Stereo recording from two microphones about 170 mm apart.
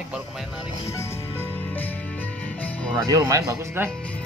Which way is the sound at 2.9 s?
20° right (ahead or behind).